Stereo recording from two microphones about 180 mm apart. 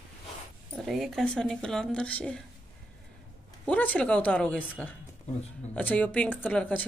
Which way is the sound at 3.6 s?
10° left (ahead or behind).